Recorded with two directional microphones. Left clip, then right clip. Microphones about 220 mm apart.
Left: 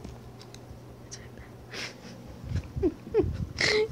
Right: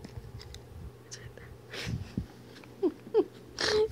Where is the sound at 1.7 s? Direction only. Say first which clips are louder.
Left 2 dB; 10° right (ahead or behind).